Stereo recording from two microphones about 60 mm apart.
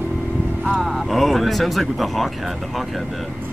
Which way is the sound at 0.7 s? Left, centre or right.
Centre.